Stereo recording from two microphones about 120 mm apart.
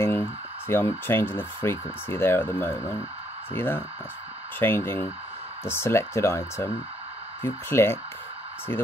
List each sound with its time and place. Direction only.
0.0 s speech: 20° left (ahead or behind)